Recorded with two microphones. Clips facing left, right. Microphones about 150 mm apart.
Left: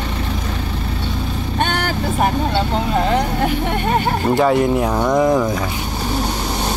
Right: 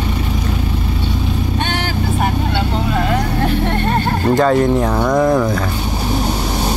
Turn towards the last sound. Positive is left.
turn(degrees=10)  # may be behind; listen again after turning